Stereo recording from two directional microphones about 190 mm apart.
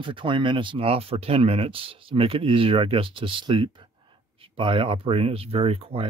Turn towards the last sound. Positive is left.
turn(degrees=-30)  # may be behind; listen again after turning